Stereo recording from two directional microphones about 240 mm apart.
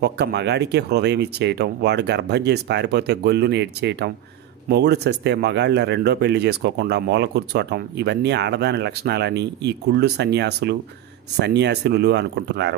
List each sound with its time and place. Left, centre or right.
0.0 s speech: right